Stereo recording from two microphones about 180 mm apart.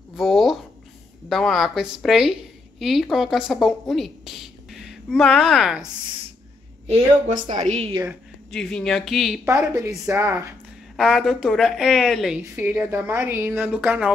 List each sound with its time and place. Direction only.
0.1 s a sound: centre (ahead or behind)
1.3 s speech: centre (ahead or behind)
6.9 s a woman's voice: 40° right (ahead or behind)
8.5 s speech: 5° left (ahead or behind)
9.8 s a woman's voice: 15° right (ahead or behind)
11.0 s a woman's voice: centre (ahead or behind)